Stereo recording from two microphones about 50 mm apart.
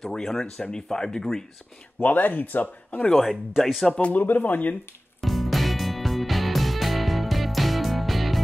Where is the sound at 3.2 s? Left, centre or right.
Centre.